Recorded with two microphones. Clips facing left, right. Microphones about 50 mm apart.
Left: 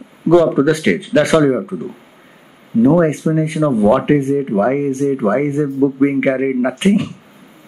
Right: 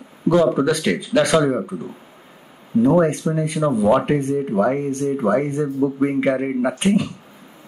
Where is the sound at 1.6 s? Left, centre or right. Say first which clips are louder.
Left 4 dB; centre.